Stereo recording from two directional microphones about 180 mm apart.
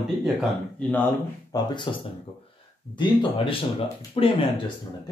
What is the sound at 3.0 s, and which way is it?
Speech, 30° left (ahead or behind).